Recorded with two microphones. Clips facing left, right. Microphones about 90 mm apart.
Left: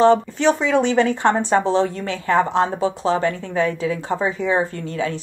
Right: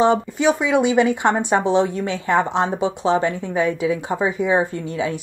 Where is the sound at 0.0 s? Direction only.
10° right (ahead or behind).